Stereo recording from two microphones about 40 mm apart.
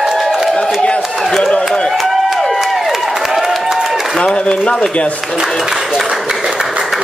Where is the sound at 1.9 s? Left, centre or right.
Centre.